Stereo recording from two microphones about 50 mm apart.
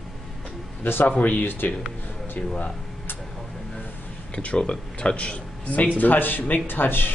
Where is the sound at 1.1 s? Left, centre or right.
Left.